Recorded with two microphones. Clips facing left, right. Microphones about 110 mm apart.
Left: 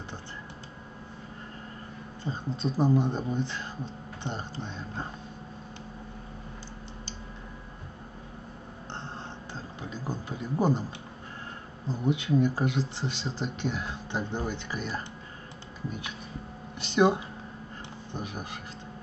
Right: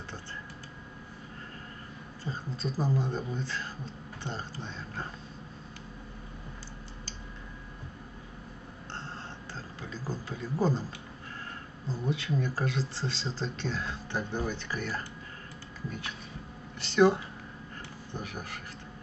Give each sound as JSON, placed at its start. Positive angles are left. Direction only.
{"t": 2.2, "sound": "speech", "side_deg": 20}
{"t": 9.5, "sound": "speech", "side_deg": 20}
{"t": 11.9, "sound": "speech", "side_deg": 20}
{"t": 16.8, "sound": "speech", "side_deg": 20}